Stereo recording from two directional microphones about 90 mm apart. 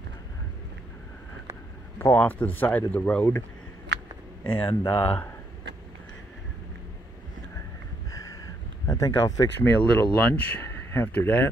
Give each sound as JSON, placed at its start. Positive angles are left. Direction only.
{"t": 2.0, "sound": "speech", "side_deg": 20}
{"t": 4.5, "sound": "speech", "side_deg": 25}
{"t": 8.1, "sound": "a sound", "side_deg": 35}
{"t": 8.8, "sound": "speech", "side_deg": 40}
{"t": 9.6, "sound": "speech", "side_deg": 20}